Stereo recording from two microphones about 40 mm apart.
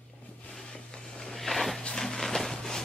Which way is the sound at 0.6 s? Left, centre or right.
Centre.